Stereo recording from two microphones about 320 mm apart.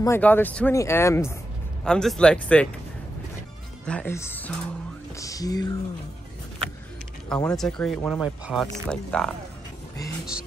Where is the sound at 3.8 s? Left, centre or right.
Centre.